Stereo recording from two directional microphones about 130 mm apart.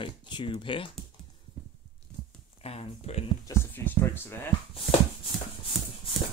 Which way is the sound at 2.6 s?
50° left (ahead or behind).